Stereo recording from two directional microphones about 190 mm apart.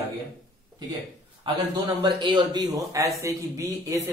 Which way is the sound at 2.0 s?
25° right (ahead or behind).